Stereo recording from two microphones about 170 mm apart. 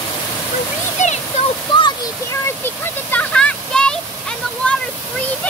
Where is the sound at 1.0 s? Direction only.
45° left (ahead or behind).